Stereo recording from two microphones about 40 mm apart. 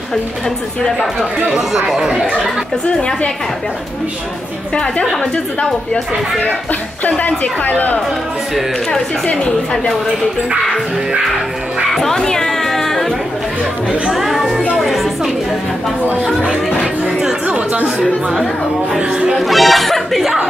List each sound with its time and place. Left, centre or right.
1.5 s speech: centre
2.9 s a woman's voice: centre
7.1 s a woman's voice: left
11.9 s music: centre
14.1 s speech: centre
18.9 s speech: right
19.3 s speech: centre